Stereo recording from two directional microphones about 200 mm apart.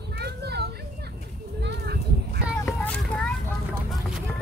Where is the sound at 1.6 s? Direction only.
55° right (ahead or behind).